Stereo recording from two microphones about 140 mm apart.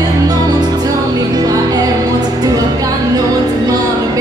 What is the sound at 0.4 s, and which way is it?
Music, 30° right (ahead or behind).